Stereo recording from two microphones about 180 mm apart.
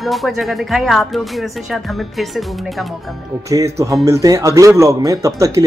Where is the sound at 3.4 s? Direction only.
20° right (ahead or behind).